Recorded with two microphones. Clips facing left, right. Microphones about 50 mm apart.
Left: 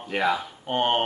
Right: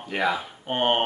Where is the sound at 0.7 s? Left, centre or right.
Centre.